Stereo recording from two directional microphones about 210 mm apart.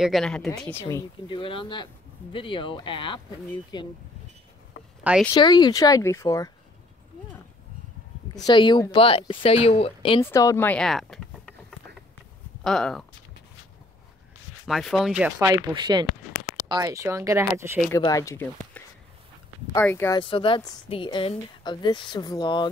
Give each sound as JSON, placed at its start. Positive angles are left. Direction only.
{"t": 0.0, "sound": "a woman's voice", "side_deg": 0}
{"t": 5.3, "sound": "speech", "side_deg": 20}
{"t": 8.5, "sound": "a woman's voice", "side_deg": 20}
{"t": 10.2, "sound": "speech", "side_deg": 15}
{"t": 12.6, "sound": "speech", "side_deg": 0}
{"t": 14.7, "sound": "speech", "side_deg": 0}
{"t": 15.5, "sound": "speech", "side_deg": -20}
{"t": 17.9, "sound": "speech", "side_deg": 15}
{"t": 19.7, "sound": "speech", "side_deg": 10}
{"t": 20.2, "sound": "a woman's voice", "side_deg": 25}